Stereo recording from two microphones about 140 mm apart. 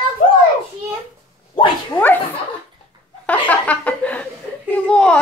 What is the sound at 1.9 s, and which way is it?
Speech, 15° left (ahead or behind).